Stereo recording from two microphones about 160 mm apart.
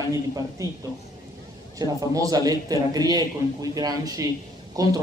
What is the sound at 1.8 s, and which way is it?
Speech, 20° right (ahead or behind).